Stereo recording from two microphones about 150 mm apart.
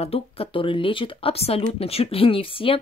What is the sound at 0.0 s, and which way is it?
Speech, 40° left (ahead or behind).